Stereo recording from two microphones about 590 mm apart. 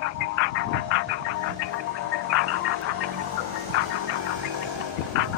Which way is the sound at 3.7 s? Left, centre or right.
Centre.